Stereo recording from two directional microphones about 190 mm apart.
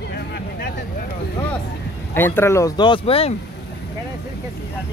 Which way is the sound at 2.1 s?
10° left (ahead or behind).